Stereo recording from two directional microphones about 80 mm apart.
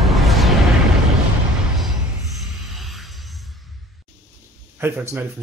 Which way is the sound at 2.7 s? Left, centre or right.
Centre.